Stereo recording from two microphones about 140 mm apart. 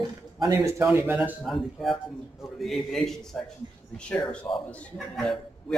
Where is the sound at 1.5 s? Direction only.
Centre (ahead or behind).